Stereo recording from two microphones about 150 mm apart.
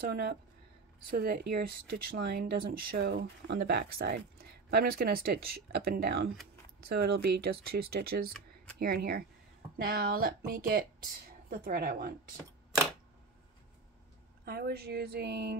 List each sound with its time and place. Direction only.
0.0 s speech: 90° right; by 10.9 s 75° right (ahead or behind)
11.5 s speech: 85° right
14.4 s speech: 90° right